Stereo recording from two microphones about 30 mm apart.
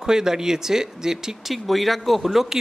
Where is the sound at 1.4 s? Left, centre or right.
Centre.